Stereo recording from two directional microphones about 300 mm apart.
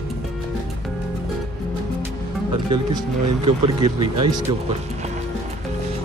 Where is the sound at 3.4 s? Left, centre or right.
Centre.